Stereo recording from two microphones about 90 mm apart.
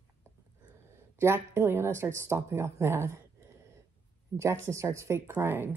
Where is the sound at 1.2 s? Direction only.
30° right (ahead or behind).